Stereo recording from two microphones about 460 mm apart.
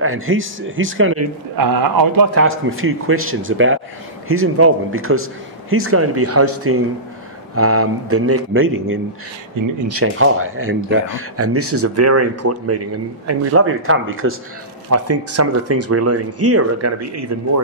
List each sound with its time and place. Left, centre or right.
0.0 s speech: right
1.6 s a man's voice: right
2.3 s speech: right